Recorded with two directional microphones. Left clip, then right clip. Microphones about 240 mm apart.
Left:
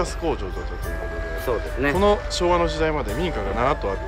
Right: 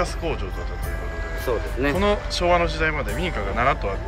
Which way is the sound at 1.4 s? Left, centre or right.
Centre.